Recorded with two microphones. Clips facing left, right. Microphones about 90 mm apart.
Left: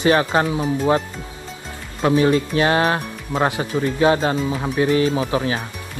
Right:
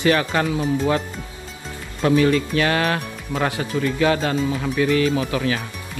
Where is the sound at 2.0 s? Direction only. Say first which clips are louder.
Left 1 dB; 30° left (ahead or behind).